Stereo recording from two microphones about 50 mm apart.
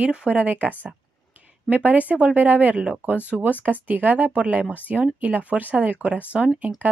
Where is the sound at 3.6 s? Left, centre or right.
Right.